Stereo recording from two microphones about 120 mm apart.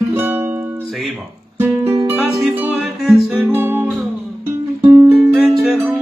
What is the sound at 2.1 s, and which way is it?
Music, centre (ahead or behind).